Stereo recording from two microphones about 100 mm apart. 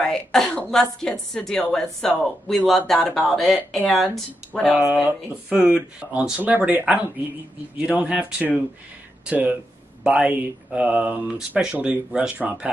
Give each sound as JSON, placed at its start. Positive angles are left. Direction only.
{"t": 0.0, "sound": "speech", "side_deg": 5}
{"t": 5.0, "sound": "speech", "side_deg": -10}